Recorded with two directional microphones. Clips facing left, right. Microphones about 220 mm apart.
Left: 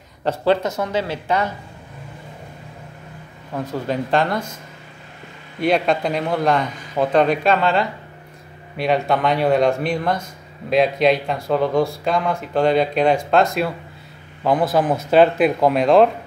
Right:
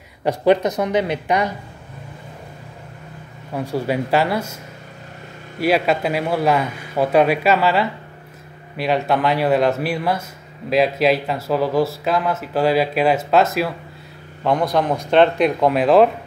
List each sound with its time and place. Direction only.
0.2 s speech: 15° right (ahead or behind)
3.5 s speech: 10° right (ahead or behind)
5.6 s speech: 5° right (ahead or behind)